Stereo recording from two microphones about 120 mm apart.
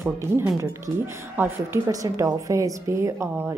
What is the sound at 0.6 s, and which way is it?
A woman's voice, 20° right (ahead or behind).